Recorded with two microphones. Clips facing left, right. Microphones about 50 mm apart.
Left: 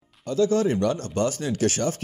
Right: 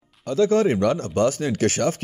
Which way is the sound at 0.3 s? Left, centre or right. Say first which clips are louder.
Right 3 dB; right.